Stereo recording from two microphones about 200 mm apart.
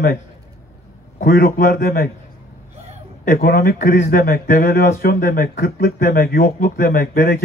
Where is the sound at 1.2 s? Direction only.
50° left (ahead or behind).